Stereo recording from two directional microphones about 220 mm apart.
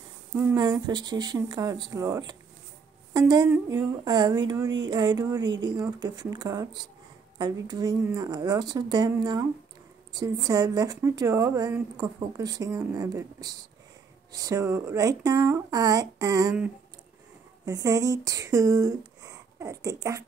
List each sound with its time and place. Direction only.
0.4 s a woman's voice: 15° right (ahead or behind)
8.0 s a woman's voice: 5° right (ahead or behind)
8.3 s a woman's voice: 20° right (ahead or behind)
17.6 s speech: 15° right (ahead or behind)